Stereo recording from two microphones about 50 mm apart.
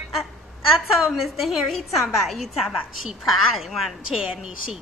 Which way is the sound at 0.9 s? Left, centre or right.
Centre.